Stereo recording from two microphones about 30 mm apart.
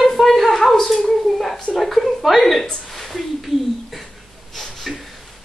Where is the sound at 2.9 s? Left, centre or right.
Centre.